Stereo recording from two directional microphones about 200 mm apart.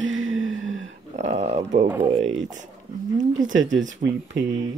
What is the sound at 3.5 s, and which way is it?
Speech, 70° right (ahead or behind).